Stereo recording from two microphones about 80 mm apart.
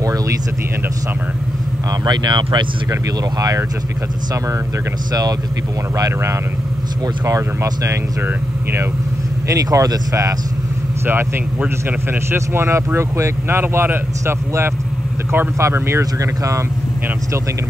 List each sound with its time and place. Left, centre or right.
2.0 s speech: right
2.9 s speech: right
5.9 s speech: right
9.5 s speech: right
12.1 s speech: right